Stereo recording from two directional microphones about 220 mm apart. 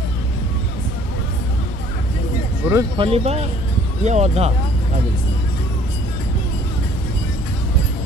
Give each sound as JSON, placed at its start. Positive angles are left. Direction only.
{"t": 2.7, "sound": "speech", "side_deg": -15}
{"t": 3.1, "sound": "speech", "side_deg": -30}